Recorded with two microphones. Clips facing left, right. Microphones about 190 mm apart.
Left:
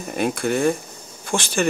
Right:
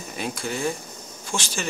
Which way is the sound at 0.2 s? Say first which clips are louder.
Left 8 dB; 55° left (ahead or behind).